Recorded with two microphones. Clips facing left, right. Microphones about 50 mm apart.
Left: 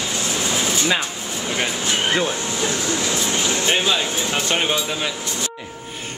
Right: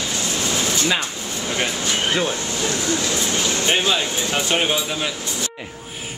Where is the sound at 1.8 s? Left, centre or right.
Left.